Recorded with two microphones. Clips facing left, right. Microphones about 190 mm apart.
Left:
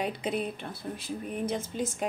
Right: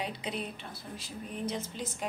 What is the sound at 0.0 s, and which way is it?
Speech, 50° left (ahead or behind).